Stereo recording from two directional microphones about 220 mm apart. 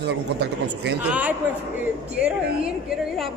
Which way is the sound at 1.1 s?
5° right (ahead or behind).